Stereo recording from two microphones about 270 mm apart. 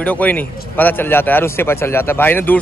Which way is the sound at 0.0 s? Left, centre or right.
Centre.